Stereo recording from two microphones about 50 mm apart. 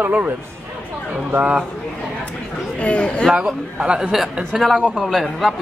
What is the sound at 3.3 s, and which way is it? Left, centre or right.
Speech, right.